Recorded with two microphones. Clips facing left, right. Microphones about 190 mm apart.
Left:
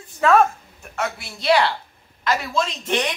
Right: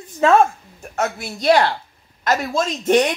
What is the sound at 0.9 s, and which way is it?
Speech, 45° right (ahead or behind).